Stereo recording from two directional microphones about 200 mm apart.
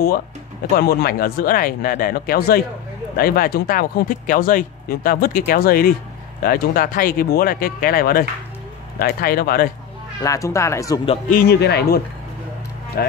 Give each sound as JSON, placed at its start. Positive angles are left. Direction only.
{"t": 0.7, "sound": "speech", "side_deg": 50}
{"t": 10.2, "sound": "speech", "side_deg": 15}
{"t": 11.2, "sound": "speech", "side_deg": 50}